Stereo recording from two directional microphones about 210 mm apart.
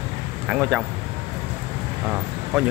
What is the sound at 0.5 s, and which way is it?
Speech, centre (ahead or behind).